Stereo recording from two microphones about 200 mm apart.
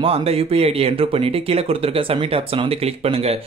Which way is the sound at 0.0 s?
30° right (ahead or behind).